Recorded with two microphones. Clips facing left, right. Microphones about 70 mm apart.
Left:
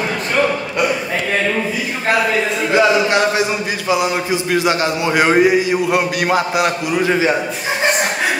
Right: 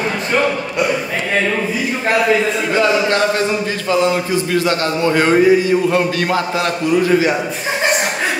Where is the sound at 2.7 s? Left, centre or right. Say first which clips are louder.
Left 2 dB; centre.